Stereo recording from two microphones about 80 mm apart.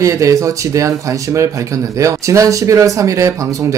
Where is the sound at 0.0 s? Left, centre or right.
Right.